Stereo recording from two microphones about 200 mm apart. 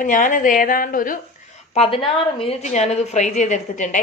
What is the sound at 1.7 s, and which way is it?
A woman's voice, 30° left (ahead or behind).